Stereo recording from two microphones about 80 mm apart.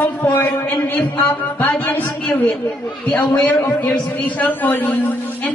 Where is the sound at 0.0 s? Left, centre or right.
Left.